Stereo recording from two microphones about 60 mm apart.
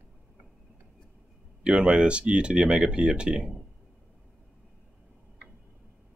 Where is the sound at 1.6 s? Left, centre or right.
Centre.